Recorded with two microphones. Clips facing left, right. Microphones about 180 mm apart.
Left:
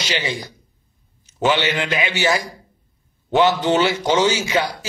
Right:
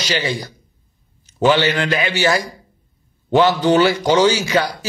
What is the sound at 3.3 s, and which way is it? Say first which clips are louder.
A man's voice: right 3 dB; 20° left (ahead or behind).